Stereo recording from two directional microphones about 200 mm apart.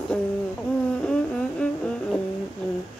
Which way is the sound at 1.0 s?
5° left (ahead or behind).